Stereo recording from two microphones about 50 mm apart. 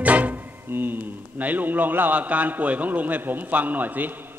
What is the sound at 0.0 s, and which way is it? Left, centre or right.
Music, right.